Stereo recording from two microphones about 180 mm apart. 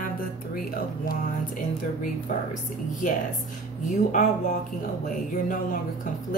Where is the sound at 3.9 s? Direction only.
45° left (ahead or behind).